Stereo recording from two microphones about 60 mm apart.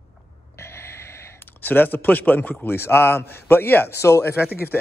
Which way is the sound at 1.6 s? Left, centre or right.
Left.